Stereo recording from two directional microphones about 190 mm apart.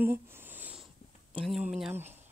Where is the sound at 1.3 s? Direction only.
Centre (ahead or behind).